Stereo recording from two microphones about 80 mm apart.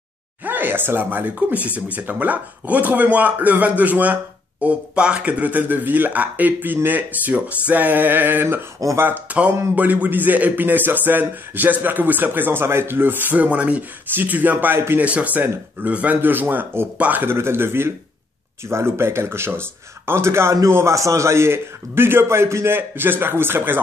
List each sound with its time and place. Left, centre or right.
0.4 s speech: right
15.0 s a man's voice: centre